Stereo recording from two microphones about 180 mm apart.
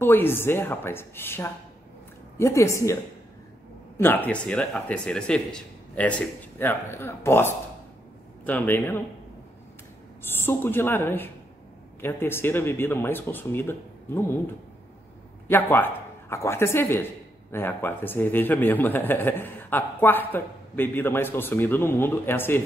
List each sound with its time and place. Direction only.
0.0 s a man's voice: 10° left (ahead or behind)
4.0 s a man's voice: 10° left (ahead or behind)
10.2 s a man's voice: 10° left (ahead or behind)
15.4 s a man's voice: 10° left (ahead or behind)